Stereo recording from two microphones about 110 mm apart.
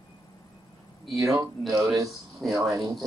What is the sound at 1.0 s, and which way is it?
Speech, centre (ahead or behind).